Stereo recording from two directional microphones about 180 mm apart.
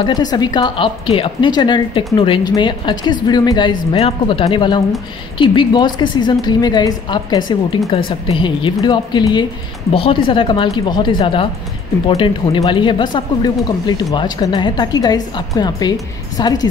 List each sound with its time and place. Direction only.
0.0 s speech: 20° left (ahead or behind)